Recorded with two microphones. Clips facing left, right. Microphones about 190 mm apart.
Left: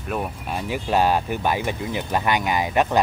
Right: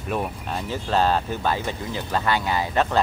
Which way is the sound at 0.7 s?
15° left (ahead or behind).